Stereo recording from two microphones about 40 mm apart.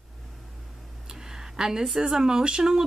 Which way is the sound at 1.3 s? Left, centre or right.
Centre.